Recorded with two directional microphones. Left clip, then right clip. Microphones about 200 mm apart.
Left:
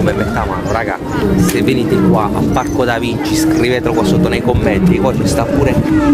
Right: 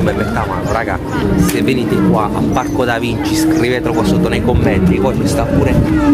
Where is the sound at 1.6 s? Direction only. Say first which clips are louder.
Left 1 dB; centre (ahead or behind).